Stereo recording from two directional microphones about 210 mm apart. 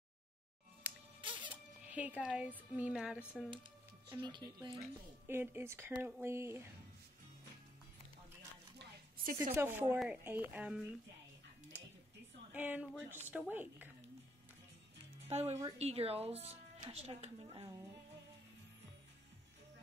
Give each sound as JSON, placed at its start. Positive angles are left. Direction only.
{"t": 0.8, "sound": "music", "side_deg": -10}
{"t": 1.2, "sound": "music", "side_deg": -25}
{"t": 1.9, "sound": "speech", "side_deg": -5}
{"t": 4.1, "sound": "speech", "side_deg": -20}
{"t": 4.7, "sound": "speech", "side_deg": -10}
{"t": 8.7, "sound": "a sound", "side_deg": -40}
{"t": 9.6, "sound": "speech", "side_deg": -10}
{"t": 12.5, "sound": "speech", "side_deg": -5}
{"t": 15.2, "sound": "speech", "side_deg": -30}